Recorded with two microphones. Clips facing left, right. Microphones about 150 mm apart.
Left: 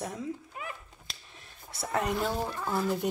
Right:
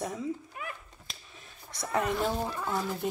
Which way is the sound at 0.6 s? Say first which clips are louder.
Even; 25° left (ahead or behind).